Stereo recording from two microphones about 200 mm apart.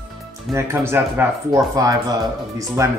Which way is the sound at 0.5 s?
15° right (ahead or behind).